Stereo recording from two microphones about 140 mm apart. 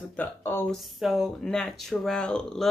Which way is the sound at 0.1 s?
15° left (ahead or behind).